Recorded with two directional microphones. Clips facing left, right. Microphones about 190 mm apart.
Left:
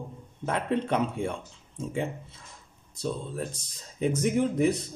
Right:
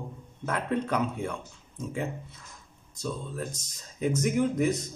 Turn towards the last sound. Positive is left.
turn(degrees=30)  # may be behind; listen again after turning